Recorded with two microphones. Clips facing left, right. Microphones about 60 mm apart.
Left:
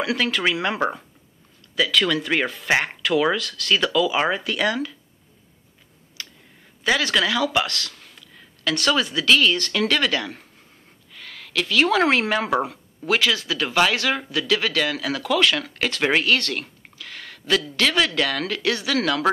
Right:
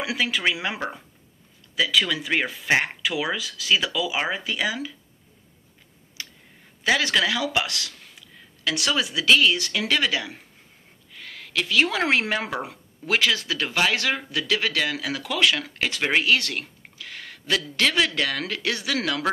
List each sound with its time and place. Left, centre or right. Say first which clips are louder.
0.0 s speech: left 2 dB; centre
1.8 s speech: left 3 dB; centre
6.2 s a sound: even; right
6.8 s speech: left 1 dB; right
11.5 s speech: left 3 dB; right